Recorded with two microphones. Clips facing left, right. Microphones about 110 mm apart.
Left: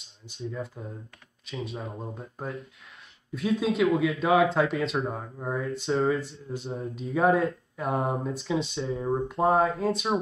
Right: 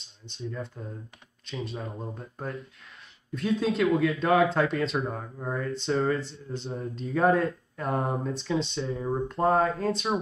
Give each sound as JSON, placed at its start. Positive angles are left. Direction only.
{"t": 0.3, "sound": "speech", "side_deg": 5}
{"t": 9.0, "sound": "speech", "side_deg": 25}
{"t": 9.3, "sound": "speech", "side_deg": 5}